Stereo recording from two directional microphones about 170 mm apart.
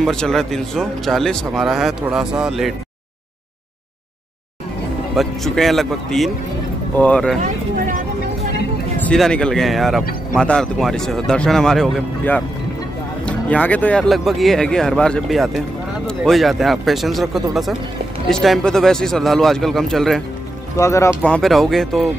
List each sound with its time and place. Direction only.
0.0 s speech: 5° left (ahead or behind)
5.1 s speech: centre (ahead or behind)
9.0 s speech: 5° left (ahead or behind)
20.7 s speech: 15° left (ahead or behind)
21.2 s speech: 5° left (ahead or behind)